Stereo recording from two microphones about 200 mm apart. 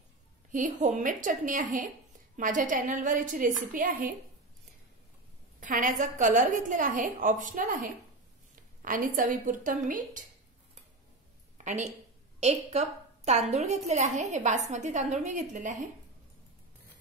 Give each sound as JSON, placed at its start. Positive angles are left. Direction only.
{"t": 0.5, "sound": "a woman's voice", "side_deg": -40}
{"t": 5.6, "sound": "a woman's voice", "side_deg": -40}
{"t": 11.5, "sound": "a sound", "side_deg": -35}
{"t": 12.4, "sound": "a woman's voice", "side_deg": -35}